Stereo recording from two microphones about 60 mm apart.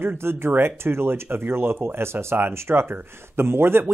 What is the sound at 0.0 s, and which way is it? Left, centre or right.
Speech, right.